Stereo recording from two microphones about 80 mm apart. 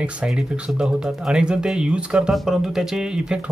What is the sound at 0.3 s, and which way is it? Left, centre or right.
Speech, centre.